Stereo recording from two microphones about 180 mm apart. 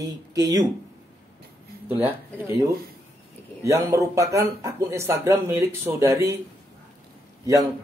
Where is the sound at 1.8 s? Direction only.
10° right (ahead or behind).